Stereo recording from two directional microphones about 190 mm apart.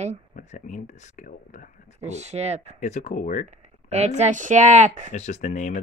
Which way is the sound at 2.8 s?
40° left (ahead or behind).